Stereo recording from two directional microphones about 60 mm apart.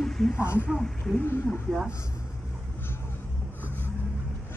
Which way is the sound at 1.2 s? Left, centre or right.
Left.